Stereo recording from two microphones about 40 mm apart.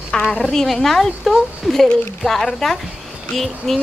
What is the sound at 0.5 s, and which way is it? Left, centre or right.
Speech, centre.